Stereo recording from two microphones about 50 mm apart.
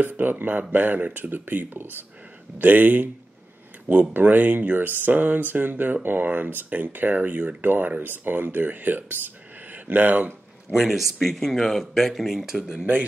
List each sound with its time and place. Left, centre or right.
0.0 s speech: right
4.1 s speech: right
10.7 s speech: centre
11.3 s speech: centre